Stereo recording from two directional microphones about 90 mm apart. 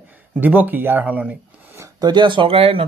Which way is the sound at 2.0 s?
60° right (ahead or behind).